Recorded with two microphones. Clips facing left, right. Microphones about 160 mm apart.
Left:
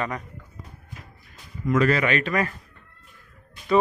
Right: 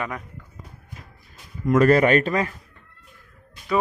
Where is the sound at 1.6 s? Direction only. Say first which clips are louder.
Right 5 dB; 45° right (ahead or behind).